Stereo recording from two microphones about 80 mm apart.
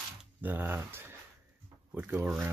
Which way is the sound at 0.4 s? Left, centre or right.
Right.